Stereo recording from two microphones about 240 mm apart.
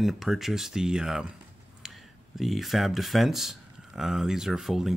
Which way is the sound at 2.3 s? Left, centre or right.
Centre.